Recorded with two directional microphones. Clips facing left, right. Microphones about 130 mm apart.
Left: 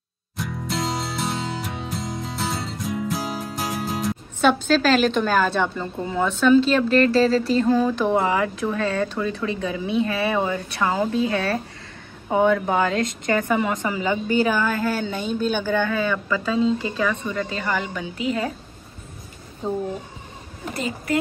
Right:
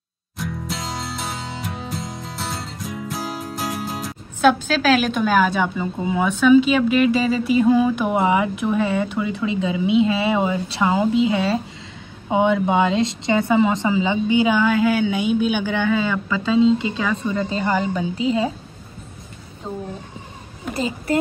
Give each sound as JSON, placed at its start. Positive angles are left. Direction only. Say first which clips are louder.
{"t": 0.4, "sound": "music", "louder": "left 2 dB", "side_deg": 0}
{"t": 9.1, "sound": "a woman's voice", "louder": "right 3 dB", "side_deg": -15}